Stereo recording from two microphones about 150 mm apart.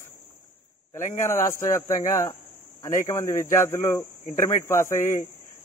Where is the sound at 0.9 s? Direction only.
20° left (ahead or behind).